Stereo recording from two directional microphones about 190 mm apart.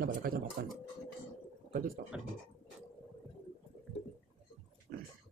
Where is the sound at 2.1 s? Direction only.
5° right (ahead or behind).